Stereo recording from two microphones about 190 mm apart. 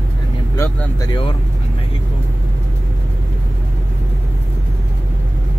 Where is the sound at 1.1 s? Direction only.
25° left (ahead or behind).